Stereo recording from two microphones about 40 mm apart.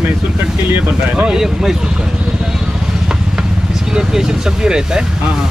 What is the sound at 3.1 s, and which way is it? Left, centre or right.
Vehicle, centre.